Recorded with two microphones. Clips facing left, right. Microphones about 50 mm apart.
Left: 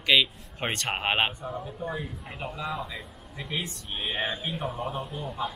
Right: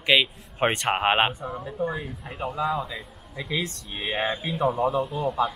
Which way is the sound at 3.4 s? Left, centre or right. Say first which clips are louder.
Right 4 dB; right.